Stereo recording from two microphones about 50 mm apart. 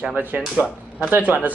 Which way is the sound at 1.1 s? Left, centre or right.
Right.